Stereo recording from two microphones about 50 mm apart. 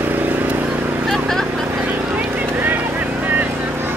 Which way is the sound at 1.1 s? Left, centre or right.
Centre.